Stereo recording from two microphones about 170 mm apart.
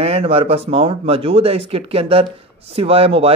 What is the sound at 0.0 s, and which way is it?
Speech, 35° right (ahead or behind).